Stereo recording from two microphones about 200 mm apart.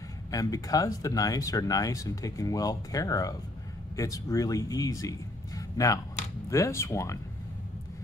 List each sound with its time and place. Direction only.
0.3 s speech: 15° left (ahead or behind)